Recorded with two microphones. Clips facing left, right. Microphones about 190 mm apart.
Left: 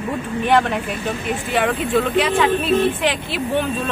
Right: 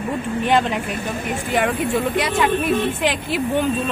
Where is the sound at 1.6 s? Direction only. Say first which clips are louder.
Left 3 dB; 10° right (ahead or behind).